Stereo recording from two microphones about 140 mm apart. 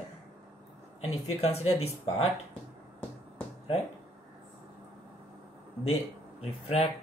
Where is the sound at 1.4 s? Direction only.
45° left (ahead or behind).